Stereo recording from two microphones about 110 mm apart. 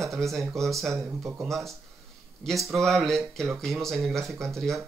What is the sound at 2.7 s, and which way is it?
Speech, centre (ahead or behind).